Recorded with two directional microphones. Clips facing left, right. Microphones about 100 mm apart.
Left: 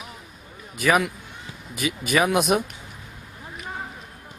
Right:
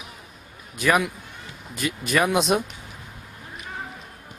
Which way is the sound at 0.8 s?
Centre (ahead or behind).